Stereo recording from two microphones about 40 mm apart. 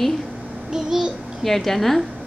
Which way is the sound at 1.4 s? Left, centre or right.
Centre.